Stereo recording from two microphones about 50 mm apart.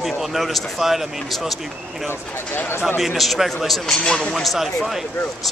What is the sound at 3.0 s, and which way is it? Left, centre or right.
Speech, centre.